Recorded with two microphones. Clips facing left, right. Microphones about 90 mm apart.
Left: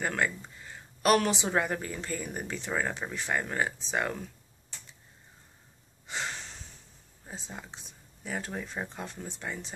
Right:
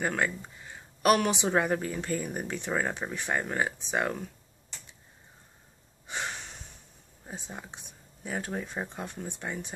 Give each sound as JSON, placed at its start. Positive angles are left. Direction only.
{"t": 0.0, "sound": "speech", "side_deg": -10}
{"t": 6.0, "sound": "a sound", "side_deg": -15}
{"t": 7.2, "sound": "speech", "side_deg": -15}